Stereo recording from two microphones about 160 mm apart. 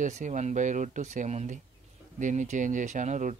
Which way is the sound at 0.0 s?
50° right (ahead or behind).